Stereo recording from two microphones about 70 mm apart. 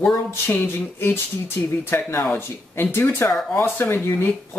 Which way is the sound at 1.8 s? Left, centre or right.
Left.